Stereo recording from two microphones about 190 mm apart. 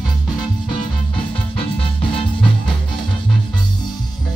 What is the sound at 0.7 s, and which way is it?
Music, 25° left (ahead or behind).